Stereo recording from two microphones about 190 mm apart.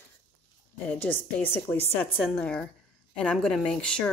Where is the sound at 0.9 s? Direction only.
10° left (ahead or behind).